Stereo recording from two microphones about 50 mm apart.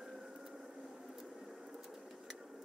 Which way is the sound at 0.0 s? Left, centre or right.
Centre.